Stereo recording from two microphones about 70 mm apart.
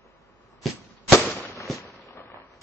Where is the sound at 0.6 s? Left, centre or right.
Centre.